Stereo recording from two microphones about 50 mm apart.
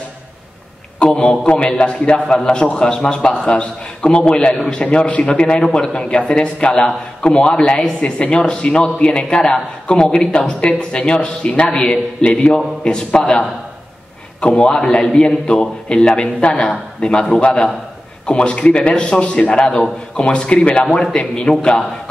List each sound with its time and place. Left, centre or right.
0.9 s a man's voice: centre
20.8 s a man's voice: centre